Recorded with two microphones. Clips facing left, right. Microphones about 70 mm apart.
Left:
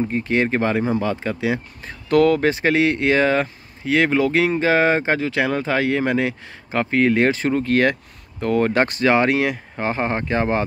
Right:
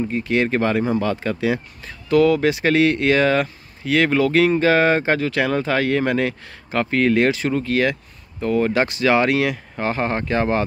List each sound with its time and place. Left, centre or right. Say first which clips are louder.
0.1 s speech: even; left
1.9 s speech: even; left
2.7 s speech: right 3 dB; left
7.2 s speech: left 1 dB; left
9.1 s speech: right 2 dB; left